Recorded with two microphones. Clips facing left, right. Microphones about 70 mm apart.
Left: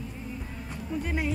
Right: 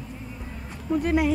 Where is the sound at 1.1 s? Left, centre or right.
Right.